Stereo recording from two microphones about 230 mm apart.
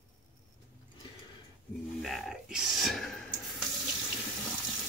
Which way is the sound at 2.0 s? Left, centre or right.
Centre.